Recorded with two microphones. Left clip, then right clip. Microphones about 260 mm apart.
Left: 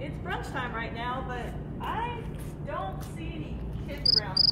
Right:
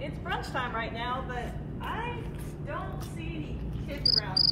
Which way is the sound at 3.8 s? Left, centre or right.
Left.